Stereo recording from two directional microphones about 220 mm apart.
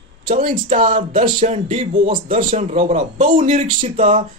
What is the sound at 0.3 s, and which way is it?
Speech, 35° right (ahead or behind).